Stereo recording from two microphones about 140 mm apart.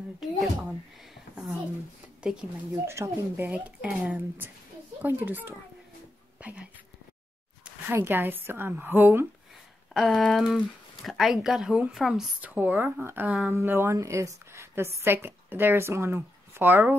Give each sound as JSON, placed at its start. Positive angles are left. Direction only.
{"t": 0.2, "sound": "a sound", "side_deg": -5}
{"t": 2.2, "sound": "speech", "side_deg": -5}
{"t": 2.7, "sound": "a woman's voice", "side_deg": -20}
{"t": 7.9, "sound": "a woman's voice", "side_deg": -15}
{"t": 9.9, "sound": "a woman's voice", "side_deg": 0}